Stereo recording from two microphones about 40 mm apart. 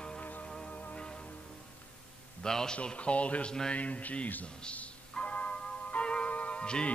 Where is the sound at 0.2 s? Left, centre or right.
Left.